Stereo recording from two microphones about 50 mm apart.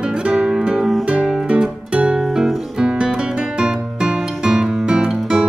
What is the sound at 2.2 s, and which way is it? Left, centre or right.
Music, centre.